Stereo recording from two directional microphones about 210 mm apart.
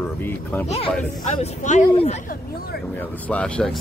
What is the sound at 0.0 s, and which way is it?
Speech, 10° left (ahead or behind).